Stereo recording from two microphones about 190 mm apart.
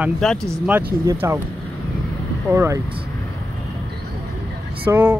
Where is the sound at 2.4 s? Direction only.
15° right (ahead or behind).